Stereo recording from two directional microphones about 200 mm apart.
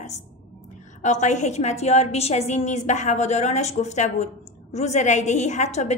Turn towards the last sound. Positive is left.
turn(degrees=35)  # may be behind; listen again after turning